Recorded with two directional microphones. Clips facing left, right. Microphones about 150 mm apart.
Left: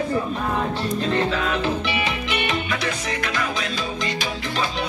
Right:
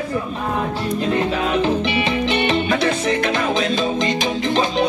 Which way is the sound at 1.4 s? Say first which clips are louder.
Right 5 dB; 25° right (ahead or behind).